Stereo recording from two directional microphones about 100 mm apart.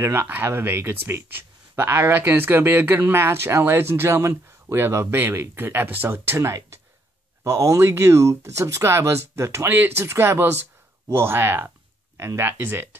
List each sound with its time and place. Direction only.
0.0 s speech: 25° right (ahead or behind)